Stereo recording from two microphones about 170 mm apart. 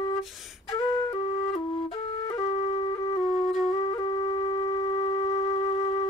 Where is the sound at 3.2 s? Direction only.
35° left (ahead or behind).